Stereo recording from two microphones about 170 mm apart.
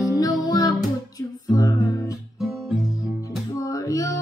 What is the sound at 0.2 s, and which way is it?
Music, 20° left (ahead or behind).